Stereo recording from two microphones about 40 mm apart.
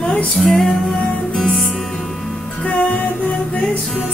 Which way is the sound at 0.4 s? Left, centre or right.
Centre.